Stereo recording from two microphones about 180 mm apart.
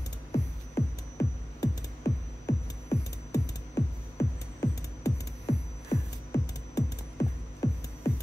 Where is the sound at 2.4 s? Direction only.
20° left (ahead or behind).